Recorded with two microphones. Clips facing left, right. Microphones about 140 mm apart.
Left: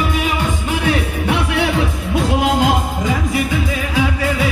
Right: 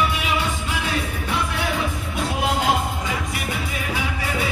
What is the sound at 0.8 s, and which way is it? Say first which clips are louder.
Music: left 10 dB; 70° left (ahead or behind).